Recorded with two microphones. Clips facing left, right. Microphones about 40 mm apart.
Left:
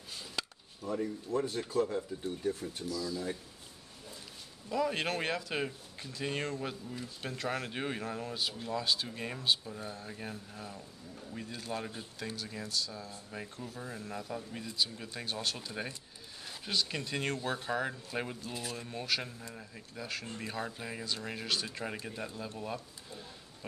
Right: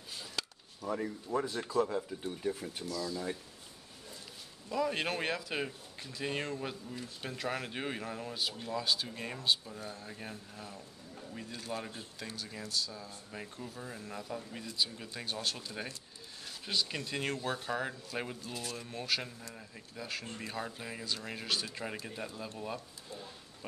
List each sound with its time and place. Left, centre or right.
0.1 s chop: centre
1.3 s speech: right
2.2 s speech: centre
4.6 s speech: centre